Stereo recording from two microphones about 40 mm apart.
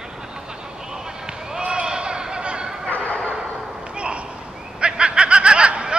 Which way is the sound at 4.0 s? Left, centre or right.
Right.